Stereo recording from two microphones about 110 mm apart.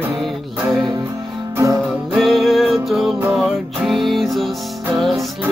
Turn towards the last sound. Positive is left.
turn(degrees=0)  # may be behind; listen again after turning